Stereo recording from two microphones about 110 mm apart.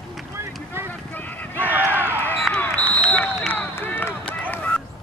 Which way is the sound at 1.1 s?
15° left (ahead or behind).